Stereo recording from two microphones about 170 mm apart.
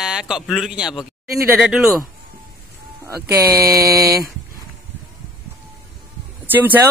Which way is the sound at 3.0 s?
15° right (ahead or behind).